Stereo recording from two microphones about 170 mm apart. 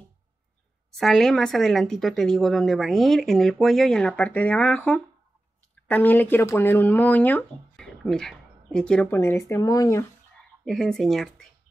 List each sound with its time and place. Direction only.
0.9 s speech: centre (ahead or behind)
9.1 s speech: 15° left (ahead or behind)
10.6 s speech: centre (ahead or behind)